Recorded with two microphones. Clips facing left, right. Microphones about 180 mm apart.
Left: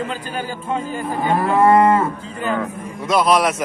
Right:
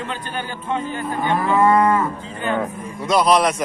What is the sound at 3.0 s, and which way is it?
Speech, centre (ahead or behind).